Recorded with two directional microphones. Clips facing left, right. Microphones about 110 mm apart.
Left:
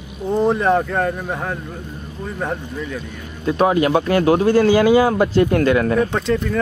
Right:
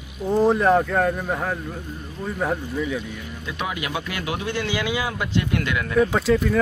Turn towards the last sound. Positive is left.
turn(degrees=-5)  # may be behind; listen again after turning